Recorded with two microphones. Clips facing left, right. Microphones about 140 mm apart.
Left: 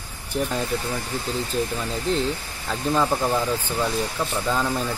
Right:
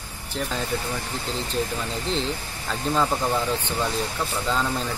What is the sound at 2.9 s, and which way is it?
Speech, 5° left (ahead or behind).